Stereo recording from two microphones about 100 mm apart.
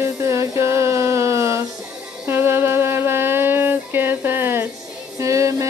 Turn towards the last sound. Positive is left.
turn(degrees=-30)  # may be behind; listen again after turning